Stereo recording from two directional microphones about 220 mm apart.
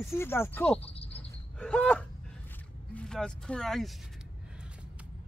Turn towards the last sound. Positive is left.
turn(degrees=0)  # may be behind; listen again after turning